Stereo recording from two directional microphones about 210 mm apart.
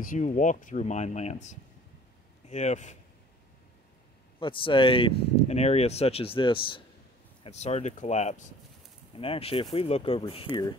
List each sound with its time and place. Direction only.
0.0 s speech: 40° left (ahead or behind)
4.4 s speech: 25° left (ahead or behind)